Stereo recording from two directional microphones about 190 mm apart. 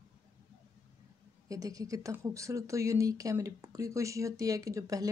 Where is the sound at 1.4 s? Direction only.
20° right (ahead or behind).